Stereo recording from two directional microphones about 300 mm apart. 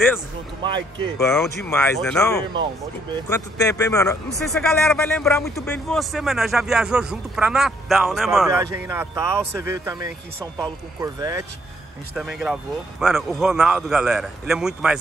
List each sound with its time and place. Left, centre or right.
0.7 s speech: centre
1.1 s speech: centre